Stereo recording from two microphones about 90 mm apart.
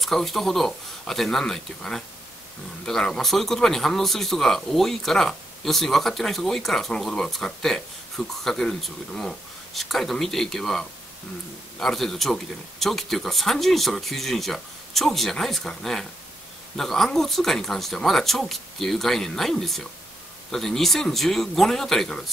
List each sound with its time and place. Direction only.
0.0 s speech: centre (ahead or behind)